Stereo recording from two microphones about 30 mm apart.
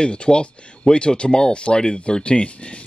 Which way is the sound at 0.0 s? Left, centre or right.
Left.